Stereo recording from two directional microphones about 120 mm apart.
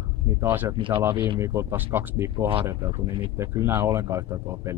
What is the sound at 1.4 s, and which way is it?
A man's voice, 20° right (ahead or behind).